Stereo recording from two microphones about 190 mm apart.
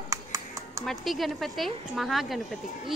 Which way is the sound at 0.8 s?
Centre (ahead or behind).